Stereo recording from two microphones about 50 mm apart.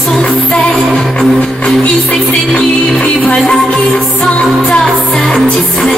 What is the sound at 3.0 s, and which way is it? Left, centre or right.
Music, centre.